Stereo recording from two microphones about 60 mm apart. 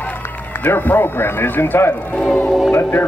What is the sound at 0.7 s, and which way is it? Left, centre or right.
Speech, left.